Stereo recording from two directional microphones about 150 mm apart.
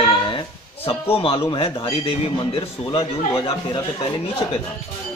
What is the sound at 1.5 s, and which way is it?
A man's voice, 35° left (ahead or behind).